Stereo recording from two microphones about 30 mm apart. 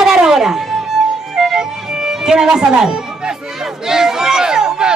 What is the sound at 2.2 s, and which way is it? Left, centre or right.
Speech, right.